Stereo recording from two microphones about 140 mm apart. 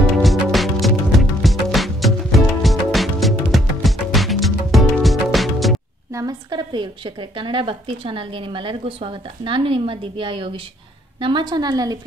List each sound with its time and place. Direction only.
0.2 s music: centre (ahead or behind)
6.1 s a woman's voice: 30° right (ahead or behind)